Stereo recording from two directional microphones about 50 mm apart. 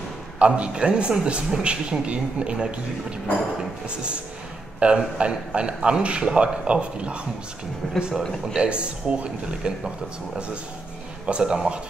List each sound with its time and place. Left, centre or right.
0.4 s a man's voice: right
4.7 s a man's voice: centre
8.1 s speech: centre
8.5 s a man's voice: right
11.2 s speech: centre